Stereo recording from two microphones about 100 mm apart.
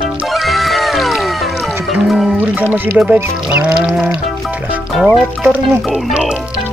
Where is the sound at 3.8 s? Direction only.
5° right (ahead or behind).